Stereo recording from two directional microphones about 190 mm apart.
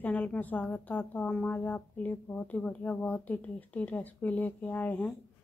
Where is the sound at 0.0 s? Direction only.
10° left (ahead or behind).